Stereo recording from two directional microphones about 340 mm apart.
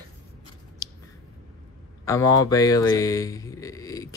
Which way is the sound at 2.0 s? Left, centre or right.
Centre.